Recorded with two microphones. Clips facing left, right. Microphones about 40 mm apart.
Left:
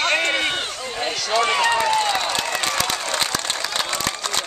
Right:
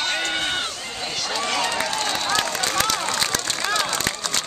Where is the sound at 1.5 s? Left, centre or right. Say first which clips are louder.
Left 4 dB; left.